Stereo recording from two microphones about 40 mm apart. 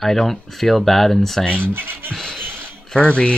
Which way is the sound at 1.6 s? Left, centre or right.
Right.